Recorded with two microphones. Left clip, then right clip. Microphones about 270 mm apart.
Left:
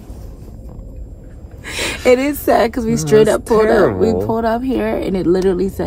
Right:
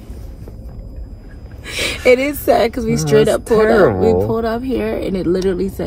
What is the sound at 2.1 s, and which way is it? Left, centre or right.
Speech, centre.